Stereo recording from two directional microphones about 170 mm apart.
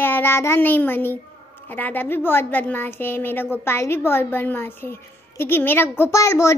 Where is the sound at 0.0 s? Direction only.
15° left (ahead or behind).